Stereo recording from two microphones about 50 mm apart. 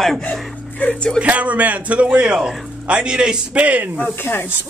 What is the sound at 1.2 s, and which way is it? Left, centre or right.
A man's voice, right.